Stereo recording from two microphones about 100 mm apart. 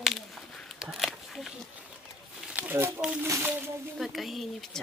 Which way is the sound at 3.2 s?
30° right (ahead or behind).